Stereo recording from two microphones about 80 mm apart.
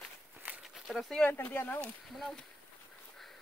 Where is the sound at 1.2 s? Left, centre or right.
Left.